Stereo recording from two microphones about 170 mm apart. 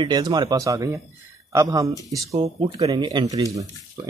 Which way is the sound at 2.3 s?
35° right (ahead or behind).